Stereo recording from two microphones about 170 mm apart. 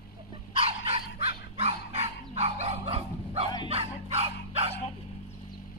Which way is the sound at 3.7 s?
35° right (ahead or behind).